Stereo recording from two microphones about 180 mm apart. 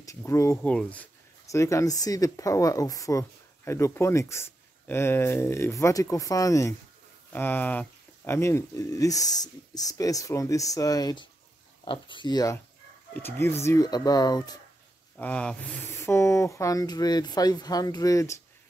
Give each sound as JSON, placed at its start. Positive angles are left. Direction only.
{"t": 0.0, "sound": "speech", "side_deg": 15}
{"t": 15.1, "sound": "speech", "side_deg": 5}